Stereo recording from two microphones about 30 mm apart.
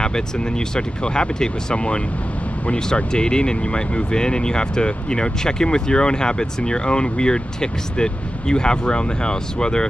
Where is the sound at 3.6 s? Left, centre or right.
Left.